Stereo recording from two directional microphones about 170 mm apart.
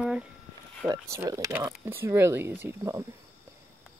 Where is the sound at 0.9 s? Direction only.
20° right (ahead or behind).